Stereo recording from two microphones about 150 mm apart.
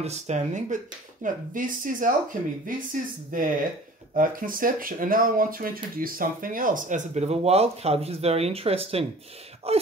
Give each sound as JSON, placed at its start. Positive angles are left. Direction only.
{"t": 0.0, "sound": "speech", "side_deg": -50}
{"t": 1.2, "sound": "speech", "side_deg": -65}